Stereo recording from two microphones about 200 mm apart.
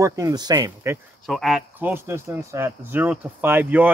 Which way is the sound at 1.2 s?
Centre (ahead or behind).